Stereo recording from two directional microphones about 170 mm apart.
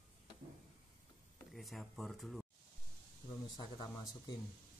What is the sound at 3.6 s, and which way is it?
Speech, 25° left (ahead or behind).